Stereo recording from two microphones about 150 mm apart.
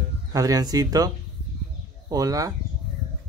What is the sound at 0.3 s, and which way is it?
Speech, 25° right (ahead or behind).